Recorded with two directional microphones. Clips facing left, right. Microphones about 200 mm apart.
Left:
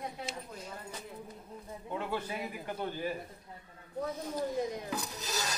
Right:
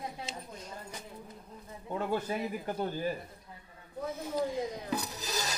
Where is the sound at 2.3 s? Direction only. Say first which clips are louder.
Right 4 dB; 40° right (ahead or behind).